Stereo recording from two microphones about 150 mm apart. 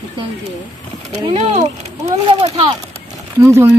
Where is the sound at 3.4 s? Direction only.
20° right (ahead or behind).